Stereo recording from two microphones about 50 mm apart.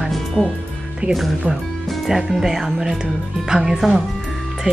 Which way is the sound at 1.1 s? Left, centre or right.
Centre.